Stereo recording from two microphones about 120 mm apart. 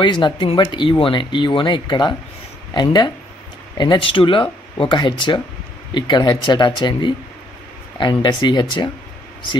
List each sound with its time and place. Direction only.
0.0 s speech: 40° left (ahead or behind)